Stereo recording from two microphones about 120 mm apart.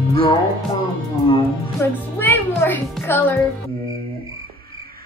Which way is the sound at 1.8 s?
15° left (ahead or behind).